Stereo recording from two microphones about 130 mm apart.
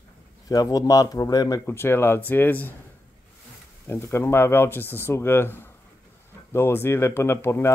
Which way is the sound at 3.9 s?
20° left (ahead or behind).